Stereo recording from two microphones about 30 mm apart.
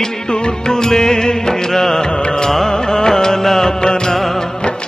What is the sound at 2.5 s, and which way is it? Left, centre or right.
Music, centre.